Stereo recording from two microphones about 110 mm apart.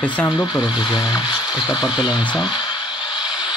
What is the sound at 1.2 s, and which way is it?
Speech, 10° right (ahead or behind).